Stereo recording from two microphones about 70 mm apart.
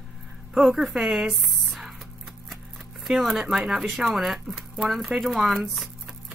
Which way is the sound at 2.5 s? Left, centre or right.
Centre.